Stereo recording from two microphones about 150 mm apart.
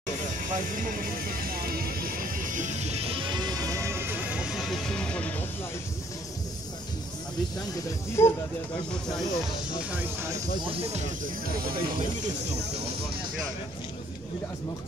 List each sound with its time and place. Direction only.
0.6 s music: 65° right (ahead or behind); by 5.3 s 5° left (ahead or behind)
8.2 s speech: 20° left (ahead or behind)
9.1 s speech: centre (ahead or behind)
10.6 s speech: 40° right (ahead or behind)
11.4 s speech: 75° right (ahead or behind)